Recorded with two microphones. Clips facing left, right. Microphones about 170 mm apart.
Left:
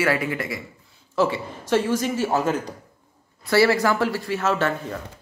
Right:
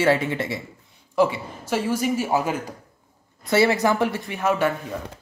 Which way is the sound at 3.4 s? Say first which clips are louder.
Left 1 dB; 20° right (ahead or behind).